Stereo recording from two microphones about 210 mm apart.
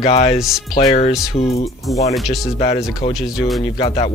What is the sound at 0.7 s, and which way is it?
Speech, 20° left (ahead or behind).